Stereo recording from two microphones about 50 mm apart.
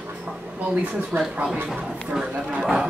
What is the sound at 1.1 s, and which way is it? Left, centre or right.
Speech, right.